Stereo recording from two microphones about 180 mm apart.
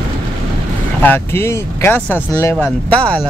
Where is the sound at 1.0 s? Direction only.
10° left (ahead or behind).